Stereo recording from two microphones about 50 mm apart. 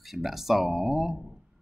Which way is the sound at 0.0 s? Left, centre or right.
Centre.